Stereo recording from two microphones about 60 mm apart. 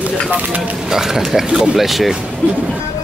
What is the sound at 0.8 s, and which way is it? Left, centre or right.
Speech, centre.